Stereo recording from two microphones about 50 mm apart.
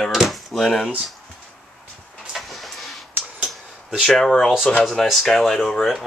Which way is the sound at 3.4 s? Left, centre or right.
Centre.